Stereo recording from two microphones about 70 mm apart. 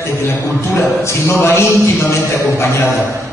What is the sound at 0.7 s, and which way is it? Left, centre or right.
A man's voice, left.